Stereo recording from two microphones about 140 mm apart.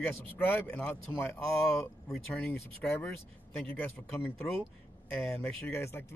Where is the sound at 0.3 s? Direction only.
15° left (ahead or behind).